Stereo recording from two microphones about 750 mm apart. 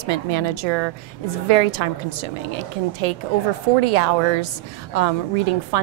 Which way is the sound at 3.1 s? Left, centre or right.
Right.